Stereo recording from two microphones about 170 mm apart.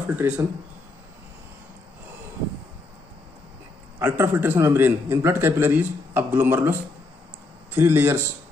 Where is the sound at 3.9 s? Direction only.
15° right (ahead or behind).